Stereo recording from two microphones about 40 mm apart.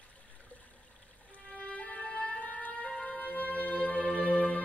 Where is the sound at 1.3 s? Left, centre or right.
Left.